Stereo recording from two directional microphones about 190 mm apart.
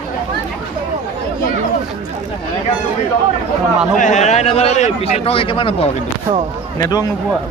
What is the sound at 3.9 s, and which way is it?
A man's voice, 40° left (ahead or behind).